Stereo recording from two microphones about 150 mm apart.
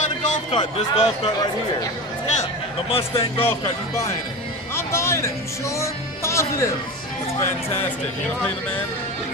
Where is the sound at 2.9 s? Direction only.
40° left (ahead or behind).